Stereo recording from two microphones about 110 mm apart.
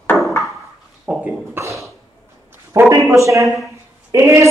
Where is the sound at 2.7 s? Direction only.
25° right (ahead or behind).